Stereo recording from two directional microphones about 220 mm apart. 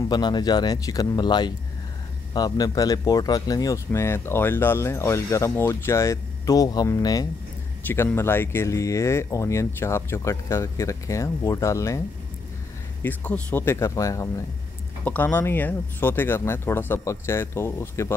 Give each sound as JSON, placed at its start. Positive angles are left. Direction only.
{"t": 0.1, "sound": "a man's voice", "side_deg": 20}
{"t": 13.0, "sound": "a man's voice", "side_deg": 5}